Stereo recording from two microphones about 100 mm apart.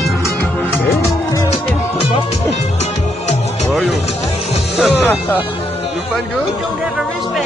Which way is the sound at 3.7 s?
Centre (ahead or behind).